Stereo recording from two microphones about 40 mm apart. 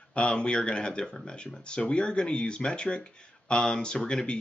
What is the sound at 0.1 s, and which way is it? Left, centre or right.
Speech, left.